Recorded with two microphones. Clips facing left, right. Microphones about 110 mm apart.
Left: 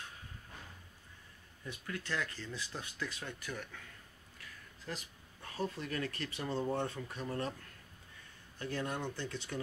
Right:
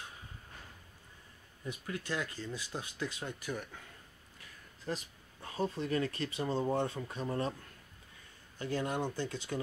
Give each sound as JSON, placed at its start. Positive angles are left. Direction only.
{"t": 1.7, "sound": "speech", "side_deg": -15}
{"t": 4.8, "sound": "speech", "side_deg": -25}
{"t": 8.5, "sound": "speech", "side_deg": -20}
{"t": 9.0, "sound": "speech", "side_deg": -40}